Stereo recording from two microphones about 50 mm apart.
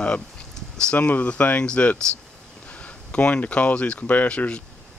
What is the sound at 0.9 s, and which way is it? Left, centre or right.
Speech, left.